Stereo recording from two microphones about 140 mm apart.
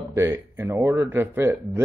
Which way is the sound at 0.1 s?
20° right (ahead or behind).